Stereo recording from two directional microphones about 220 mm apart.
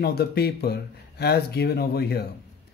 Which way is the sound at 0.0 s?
45° left (ahead or behind).